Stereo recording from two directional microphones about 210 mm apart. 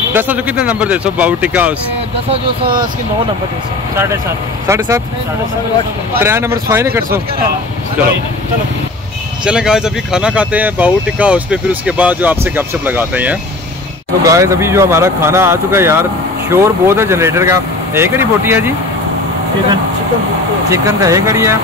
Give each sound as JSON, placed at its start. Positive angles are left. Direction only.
{"t": 0.1, "sound": "speech", "side_deg": -10}
{"t": 2.6, "sound": "speech", "side_deg": -40}
{"t": 3.9, "sound": "speech", "side_deg": -15}
{"t": 6.1, "sound": "speech", "side_deg": -10}
{"t": 9.4, "sound": "speech", "side_deg": -5}
{"t": 20.7, "sound": "speech", "side_deg": -15}